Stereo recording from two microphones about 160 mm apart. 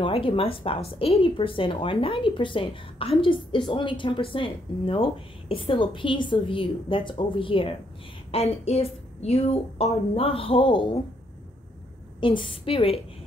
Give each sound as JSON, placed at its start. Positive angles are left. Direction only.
{"t": 0.0, "sound": "a woman's voice", "side_deg": 35}
{"t": 12.2, "sound": "a woman's voice", "side_deg": 30}